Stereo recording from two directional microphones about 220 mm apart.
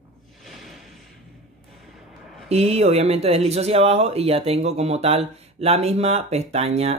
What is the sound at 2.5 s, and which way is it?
Speech, 30° right (ahead or behind).